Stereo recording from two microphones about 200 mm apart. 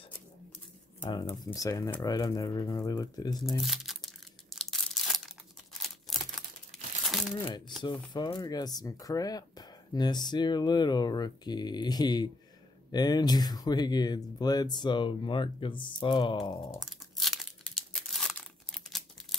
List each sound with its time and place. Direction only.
1.3 s speech: 20° left (ahead or behind)
3.4 s crumpling: centre (ahead or behind)
5.8 s a sound: centre (ahead or behind)
7.1 s crumpling: centre (ahead or behind)
7.4 s speech: 20° left (ahead or behind)
16.8 s crumpling: centre (ahead or behind)